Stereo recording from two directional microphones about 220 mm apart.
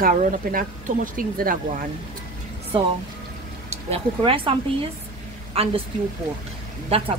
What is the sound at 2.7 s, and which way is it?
Speech, 25° right (ahead or behind).